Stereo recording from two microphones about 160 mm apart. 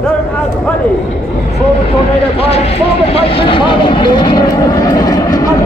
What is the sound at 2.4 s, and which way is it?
Speech, 40° left (ahead or behind).